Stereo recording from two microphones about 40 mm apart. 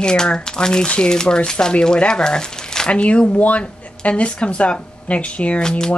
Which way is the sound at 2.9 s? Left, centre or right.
Left.